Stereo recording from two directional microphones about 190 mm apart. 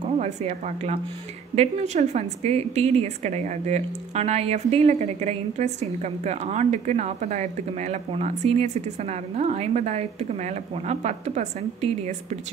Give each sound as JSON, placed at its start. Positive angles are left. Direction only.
{"t": 0.2, "sound": "a woman's voice", "side_deg": -35}